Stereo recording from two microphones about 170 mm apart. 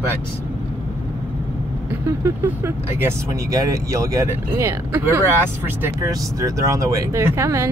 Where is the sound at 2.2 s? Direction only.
15° right (ahead or behind).